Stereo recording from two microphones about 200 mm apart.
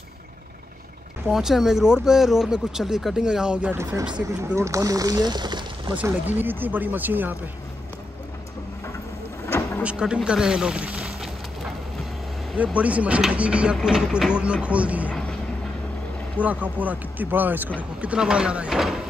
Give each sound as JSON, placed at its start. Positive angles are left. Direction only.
{"t": 1.3, "sound": "speech", "side_deg": 0}
{"t": 5.9, "sound": "speech", "side_deg": -10}
{"t": 9.5, "sound": "vehicle", "side_deg": 15}
{"t": 9.8, "sound": "speech", "side_deg": -5}
{"t": 12.5, "sound": "speech", "side_deg": -5}
{"t": 15.0, "sound": "speech", "side_deg": 5}
{"t": 16.3, "sound": "speech", "side_deg": -5}